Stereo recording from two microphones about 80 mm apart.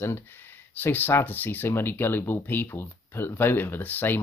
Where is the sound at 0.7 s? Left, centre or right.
Left.